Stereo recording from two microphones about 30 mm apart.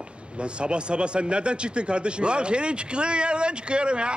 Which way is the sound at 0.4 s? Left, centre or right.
Right.